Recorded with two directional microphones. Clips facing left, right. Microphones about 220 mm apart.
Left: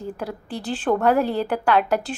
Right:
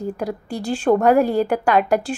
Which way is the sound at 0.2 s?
10° right (ahead or behind).